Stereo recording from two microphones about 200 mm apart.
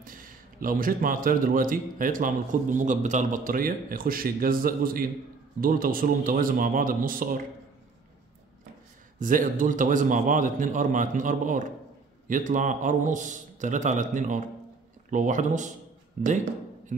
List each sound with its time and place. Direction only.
0.0 s a man's voice: 45° right (ahead or behind)
9.2 s a man's voice: 40° right (ahead or behind)